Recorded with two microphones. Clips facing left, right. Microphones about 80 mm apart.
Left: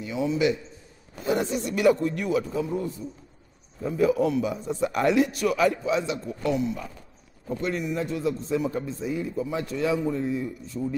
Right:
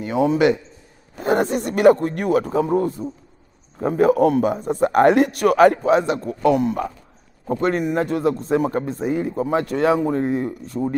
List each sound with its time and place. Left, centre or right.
0.0 s a man's voice: right